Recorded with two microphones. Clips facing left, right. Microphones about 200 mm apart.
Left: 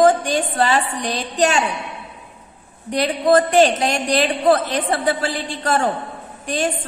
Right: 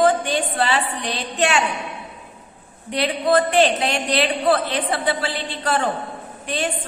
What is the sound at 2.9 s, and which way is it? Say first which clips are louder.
A woman's voice: left 3 dB; 45° left (ahead or behind).